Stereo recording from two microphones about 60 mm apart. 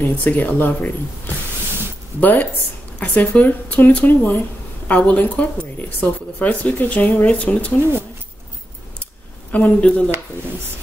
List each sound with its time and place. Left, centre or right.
0.0 s speech: left
9.0 s a sound: left
9.8 s speech: centre